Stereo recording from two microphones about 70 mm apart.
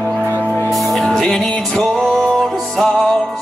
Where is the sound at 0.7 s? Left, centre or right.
Centre.